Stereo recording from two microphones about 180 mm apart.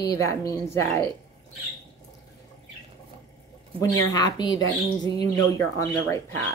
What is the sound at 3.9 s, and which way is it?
Speech, 20° left (ahead or behind).